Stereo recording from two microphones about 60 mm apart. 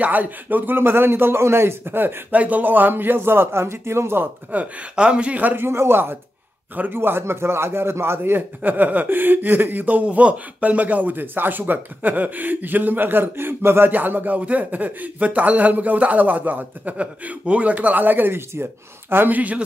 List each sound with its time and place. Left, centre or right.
0.0 s speech: right
4.5 s a man's voice: right
5.6 s speech: right
6.7 s a man's voice: right
7.0 s a man's voice: right